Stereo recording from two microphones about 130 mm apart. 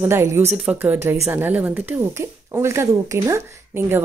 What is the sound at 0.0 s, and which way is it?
Speech, 20° right (ahead or behind).